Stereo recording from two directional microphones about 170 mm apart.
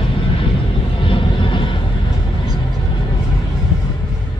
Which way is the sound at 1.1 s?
30° left (ahead or behind).